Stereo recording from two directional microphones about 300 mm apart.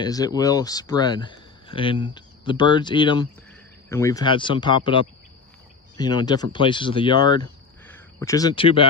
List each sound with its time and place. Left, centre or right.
0.0 s speech: centre